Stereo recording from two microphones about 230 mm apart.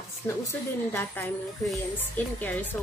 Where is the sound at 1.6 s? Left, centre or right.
Centre.